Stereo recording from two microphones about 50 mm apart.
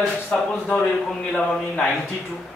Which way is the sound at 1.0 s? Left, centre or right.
Centre.